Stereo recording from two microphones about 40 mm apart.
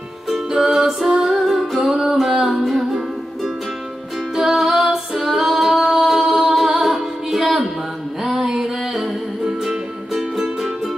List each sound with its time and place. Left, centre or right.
0.3 s music: centre
4.4 s music: centre
4.9 s female singing: centre
5.8 s music: centre